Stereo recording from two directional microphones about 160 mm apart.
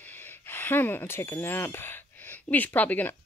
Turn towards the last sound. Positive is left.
turn(degrees=10)  # may be behind; listen again after turning